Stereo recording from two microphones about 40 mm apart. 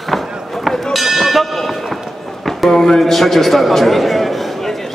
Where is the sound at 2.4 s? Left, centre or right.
Centre.